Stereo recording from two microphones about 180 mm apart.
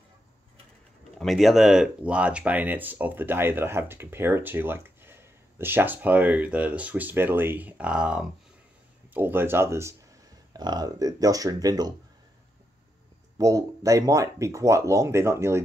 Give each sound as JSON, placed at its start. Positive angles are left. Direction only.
{"t": 1.1, "sound": "speech", "side_deg": 0}
{"t": 13.4, "sound": "speech", "side_deg": -20}